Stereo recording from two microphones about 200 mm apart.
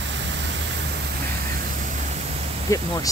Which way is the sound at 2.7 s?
15° left (ahead or behind).